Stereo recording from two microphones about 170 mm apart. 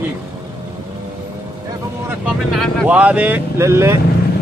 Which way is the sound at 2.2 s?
Centre (ahead or behind).